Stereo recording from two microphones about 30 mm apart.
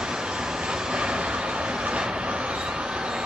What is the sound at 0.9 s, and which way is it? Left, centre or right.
Train, right.